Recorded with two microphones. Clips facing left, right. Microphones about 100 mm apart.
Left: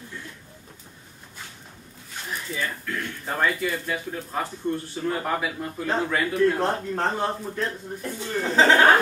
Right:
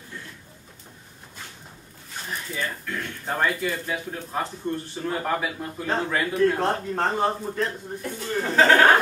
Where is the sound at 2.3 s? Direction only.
Centre (ahead or behind).